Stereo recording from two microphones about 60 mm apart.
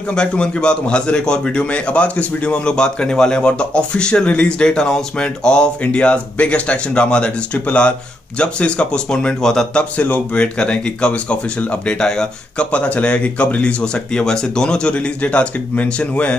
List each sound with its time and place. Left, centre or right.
0.1 s a man's voice: centre
9.8 s a man's voice: left
12.7 s speech: left